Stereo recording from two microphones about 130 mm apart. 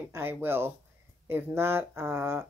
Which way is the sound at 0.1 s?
15° right (ahead or behind).